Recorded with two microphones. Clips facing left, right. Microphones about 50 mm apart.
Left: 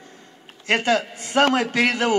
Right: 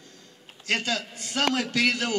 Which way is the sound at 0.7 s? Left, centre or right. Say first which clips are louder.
Left 8 dB; left.